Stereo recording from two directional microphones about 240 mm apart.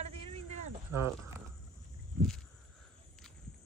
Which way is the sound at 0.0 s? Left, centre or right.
Right.